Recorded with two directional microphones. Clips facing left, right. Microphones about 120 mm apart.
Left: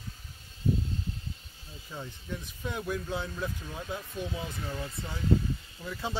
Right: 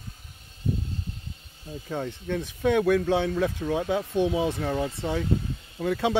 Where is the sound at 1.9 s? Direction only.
85° right.